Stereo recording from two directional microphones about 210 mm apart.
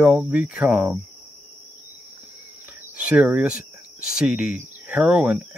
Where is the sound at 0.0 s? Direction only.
5° right (ahead or behind).